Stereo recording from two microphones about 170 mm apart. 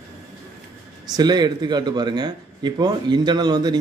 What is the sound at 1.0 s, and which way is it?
Speech, 25° right (ahead or behind).